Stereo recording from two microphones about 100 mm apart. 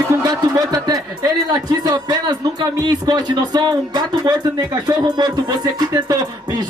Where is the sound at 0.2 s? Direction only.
40° right (ahead or behind).